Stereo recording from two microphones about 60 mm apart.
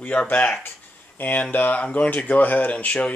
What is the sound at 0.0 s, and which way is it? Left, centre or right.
Speech, left.